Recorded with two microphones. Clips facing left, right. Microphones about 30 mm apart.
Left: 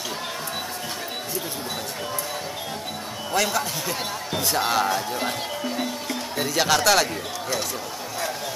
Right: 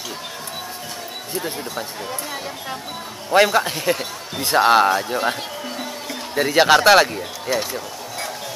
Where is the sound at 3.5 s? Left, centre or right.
Right; by 5.3 s centre.